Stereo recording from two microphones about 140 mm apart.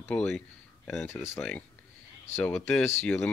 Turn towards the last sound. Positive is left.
turn(degrees=15)  # may be behind; listen again after turning